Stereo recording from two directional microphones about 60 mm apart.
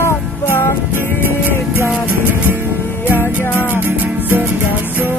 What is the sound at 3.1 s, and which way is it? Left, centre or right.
Music, left.